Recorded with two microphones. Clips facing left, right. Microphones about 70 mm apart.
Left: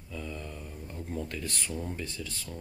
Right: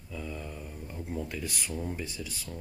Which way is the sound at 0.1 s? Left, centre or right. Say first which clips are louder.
Even; centre.